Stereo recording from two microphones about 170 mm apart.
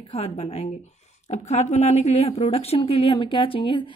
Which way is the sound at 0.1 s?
35° left (ahead or behind).